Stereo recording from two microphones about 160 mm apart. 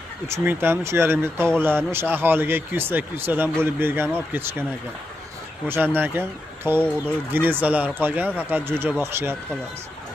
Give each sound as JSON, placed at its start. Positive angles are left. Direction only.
{"t": 0.3, "sound": "speech", "side_deg": -15}
{"t": 5.7, "sound": "speech", "side_deg": -10}